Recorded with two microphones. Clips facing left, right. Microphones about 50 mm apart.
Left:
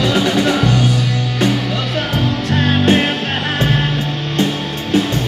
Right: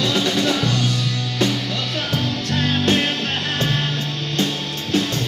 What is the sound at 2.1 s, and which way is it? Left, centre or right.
Music, left.